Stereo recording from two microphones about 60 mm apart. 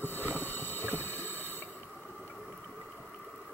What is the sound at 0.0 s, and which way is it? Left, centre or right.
Rowboat, left.